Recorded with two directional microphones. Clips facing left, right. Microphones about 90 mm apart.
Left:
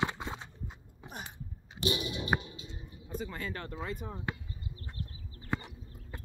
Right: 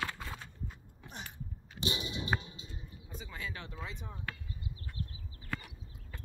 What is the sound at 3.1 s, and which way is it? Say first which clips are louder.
Speech: left 6 dB; centre (ahead or behind).